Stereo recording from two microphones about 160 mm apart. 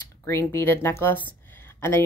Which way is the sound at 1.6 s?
15° left (ahead or behind).